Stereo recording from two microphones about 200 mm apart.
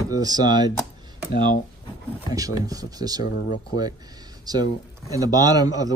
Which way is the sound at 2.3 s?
20° right (ahead or behind).